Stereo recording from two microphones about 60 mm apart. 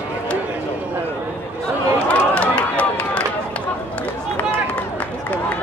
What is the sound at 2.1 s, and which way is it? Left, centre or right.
Run, left.